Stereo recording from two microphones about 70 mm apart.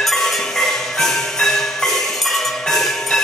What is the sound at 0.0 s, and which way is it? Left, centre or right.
Music, centre.